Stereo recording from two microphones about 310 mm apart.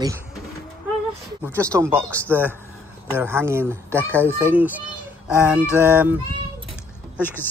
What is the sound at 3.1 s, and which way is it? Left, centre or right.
Speech, centre.